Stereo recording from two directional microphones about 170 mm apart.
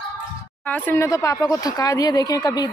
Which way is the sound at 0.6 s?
10° left (ahead or behind).